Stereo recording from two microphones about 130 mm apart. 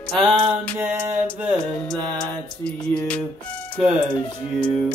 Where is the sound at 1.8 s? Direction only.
10° left (ahead or behind).